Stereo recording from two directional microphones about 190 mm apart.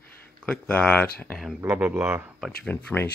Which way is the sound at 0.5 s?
5° left (ahead or behind).